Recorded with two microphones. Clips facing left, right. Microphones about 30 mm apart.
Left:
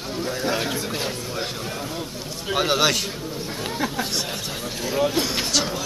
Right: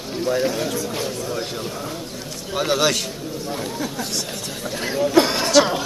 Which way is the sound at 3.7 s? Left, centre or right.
Left.